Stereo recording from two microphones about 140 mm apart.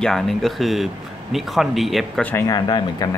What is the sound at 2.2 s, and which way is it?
Speech, 20° left (ahead or behind).